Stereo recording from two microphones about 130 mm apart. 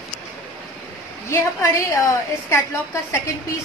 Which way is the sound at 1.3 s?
25° left (ahead or behind).